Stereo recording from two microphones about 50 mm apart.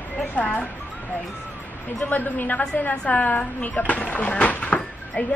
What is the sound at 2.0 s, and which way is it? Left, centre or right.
Speech, left.